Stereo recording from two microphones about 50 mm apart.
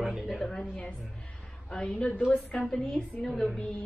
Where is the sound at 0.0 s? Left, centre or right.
Centre.